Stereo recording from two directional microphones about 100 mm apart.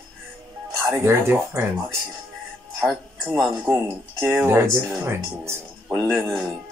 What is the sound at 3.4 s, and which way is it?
Speech, 5° left (ahead or behind).